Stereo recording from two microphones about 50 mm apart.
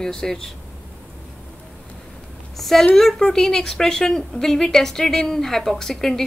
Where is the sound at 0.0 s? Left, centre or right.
Centre.